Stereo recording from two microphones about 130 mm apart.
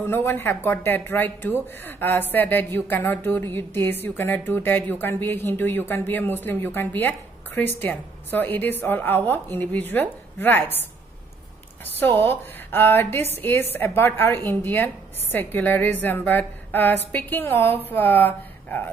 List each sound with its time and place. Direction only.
0.0 s a woman's voice: 15° left (ahead or behind)